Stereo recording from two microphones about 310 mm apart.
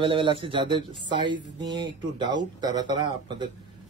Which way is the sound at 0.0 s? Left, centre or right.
Centre.